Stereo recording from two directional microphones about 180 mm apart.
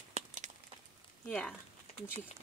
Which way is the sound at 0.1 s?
40° right (ahead or behind).